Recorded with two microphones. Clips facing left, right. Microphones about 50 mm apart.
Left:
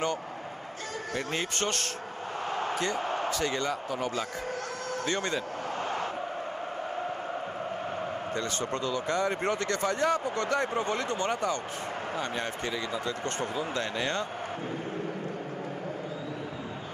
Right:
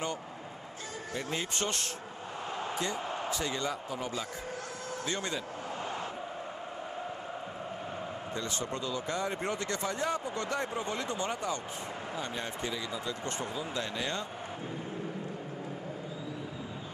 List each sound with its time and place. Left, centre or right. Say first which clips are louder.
1.1 s a man's voice: left 3 dB; left
8.4 s speech: left 3 dB; left